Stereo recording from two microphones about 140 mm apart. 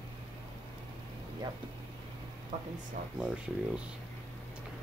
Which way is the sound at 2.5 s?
50° right (ahead or behind).